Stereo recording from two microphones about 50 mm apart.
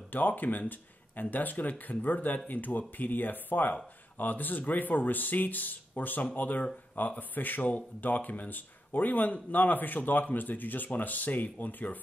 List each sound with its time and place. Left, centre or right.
0.1 s speech: left